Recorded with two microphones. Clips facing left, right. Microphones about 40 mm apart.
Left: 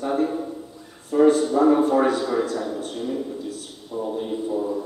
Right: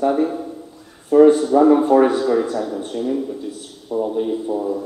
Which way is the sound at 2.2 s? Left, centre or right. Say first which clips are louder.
Right 5 dB; centre.